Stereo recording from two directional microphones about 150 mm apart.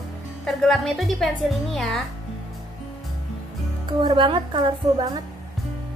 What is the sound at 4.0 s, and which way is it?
A woman's voice, 30° right (ahead or behind).